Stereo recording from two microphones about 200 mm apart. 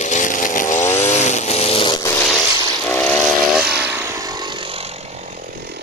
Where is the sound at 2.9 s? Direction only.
10° left (ahead or behind).